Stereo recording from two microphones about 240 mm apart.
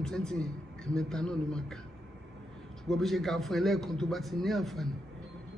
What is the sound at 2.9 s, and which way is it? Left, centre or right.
A woman's voice, centre.